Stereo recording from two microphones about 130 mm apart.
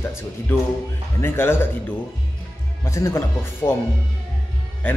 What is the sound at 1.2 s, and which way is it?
Speech, 20° left (ahead or behind).